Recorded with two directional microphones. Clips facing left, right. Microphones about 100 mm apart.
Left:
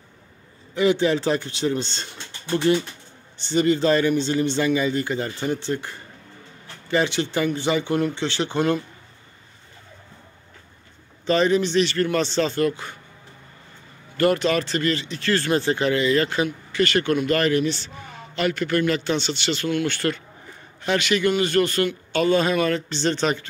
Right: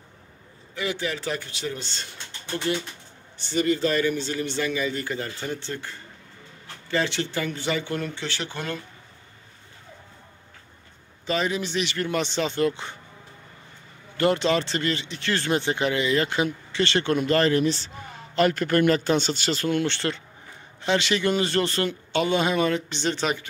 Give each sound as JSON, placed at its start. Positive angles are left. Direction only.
{"t": 0.7, "sound": "speech", "side_deg": 25}
{"t": 3.3, "sound": "speech", "side_deg": 25}
{"t": 11.2, "sound": "speech", "side_deg": -5}
{"t": 14.1, "sound": "speech", "side_deg": -20}